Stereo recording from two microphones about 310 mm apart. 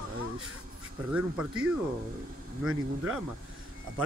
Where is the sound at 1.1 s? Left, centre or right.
Centre.